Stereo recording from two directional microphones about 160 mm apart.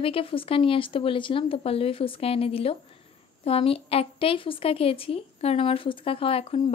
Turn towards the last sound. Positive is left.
turn(degrees=40)  # may be behind; listen again after turning